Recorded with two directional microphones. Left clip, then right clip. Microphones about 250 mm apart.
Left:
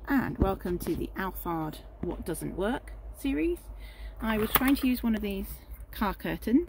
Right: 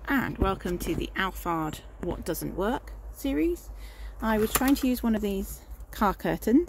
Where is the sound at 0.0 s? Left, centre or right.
Centre.